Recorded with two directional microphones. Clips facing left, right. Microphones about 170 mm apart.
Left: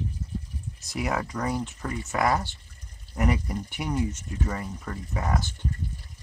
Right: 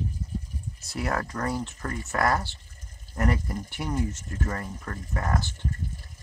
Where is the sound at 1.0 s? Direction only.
5° left (ahead or behind).